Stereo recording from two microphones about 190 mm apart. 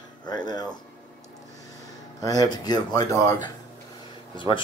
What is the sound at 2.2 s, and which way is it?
Speech, 20° left (ahead or behind).